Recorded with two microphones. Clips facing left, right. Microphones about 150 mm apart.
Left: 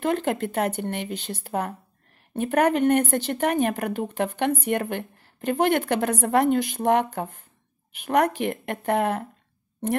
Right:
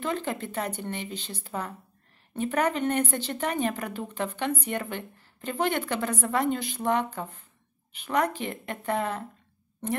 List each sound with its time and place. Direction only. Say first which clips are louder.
0.0 s a woman's voice: left 6 dB; 60° left (ahead or behind)
6.7 s a woman's voice: left 5 dB; 55° left (ahead or behind)